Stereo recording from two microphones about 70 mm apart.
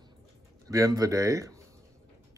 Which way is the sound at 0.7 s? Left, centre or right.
Right.